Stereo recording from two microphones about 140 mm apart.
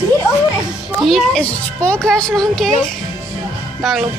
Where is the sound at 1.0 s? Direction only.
Centre (ahead or behind).